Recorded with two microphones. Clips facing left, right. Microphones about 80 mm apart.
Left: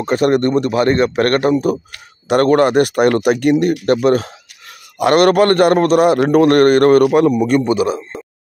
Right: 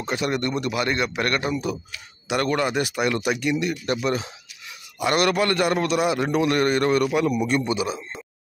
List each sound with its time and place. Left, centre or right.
0.0 s speech: left
7.2 s speech: left